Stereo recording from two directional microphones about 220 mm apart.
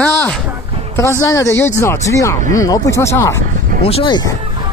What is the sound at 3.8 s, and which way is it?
Speech, 25° left (ahead or behind).